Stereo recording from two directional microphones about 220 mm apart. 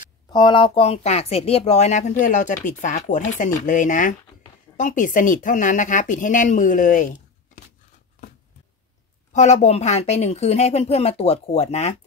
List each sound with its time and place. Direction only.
0.3 s speech: 20° left (ahead or behind); by 7.6 s 35° left (ahead or behind)
9.3 s a woman's voice: 30° left (ahead or behind)